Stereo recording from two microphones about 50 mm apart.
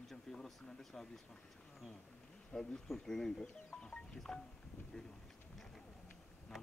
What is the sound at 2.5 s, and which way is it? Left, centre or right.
Speech, centre.